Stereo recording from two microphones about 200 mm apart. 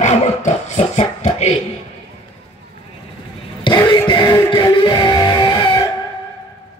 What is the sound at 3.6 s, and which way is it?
Music, 20° left (ahead or behind).